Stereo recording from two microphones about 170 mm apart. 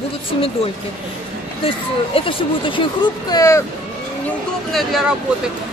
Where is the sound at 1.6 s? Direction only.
30° left (ahead or behind).